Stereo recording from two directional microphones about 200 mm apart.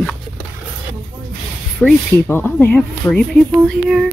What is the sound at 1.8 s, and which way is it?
Speech, 10° left (ahead or behind).